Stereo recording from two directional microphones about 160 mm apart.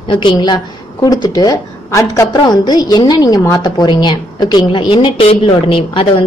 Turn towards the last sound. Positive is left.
turn(degrees=35)  # may be behind; listen again after turning